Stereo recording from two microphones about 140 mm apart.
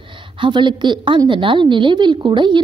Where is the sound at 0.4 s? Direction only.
35° right (ahead or behind).